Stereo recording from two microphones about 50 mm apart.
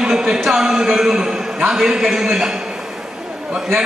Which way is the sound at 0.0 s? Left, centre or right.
Centre.